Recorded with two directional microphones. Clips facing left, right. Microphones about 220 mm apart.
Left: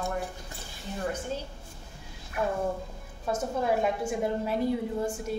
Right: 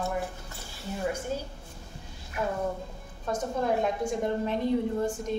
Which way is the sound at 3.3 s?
5° left (ahead or behind).